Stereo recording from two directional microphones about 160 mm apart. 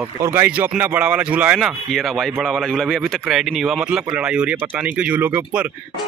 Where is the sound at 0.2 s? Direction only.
15° right (ahead or behind).